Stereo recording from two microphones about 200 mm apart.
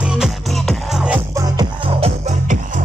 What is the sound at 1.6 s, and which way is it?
Music, 30° right (ahead or behind).